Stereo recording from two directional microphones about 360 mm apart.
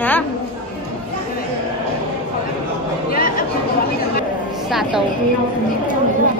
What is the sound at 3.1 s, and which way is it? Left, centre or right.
Chatter, left.